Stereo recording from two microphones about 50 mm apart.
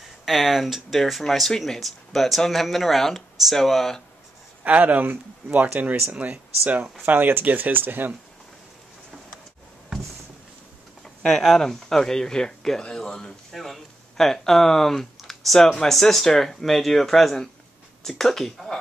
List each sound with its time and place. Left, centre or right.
0.2 s speech: centre
4.6 s speech: right
11.2 s speech: centre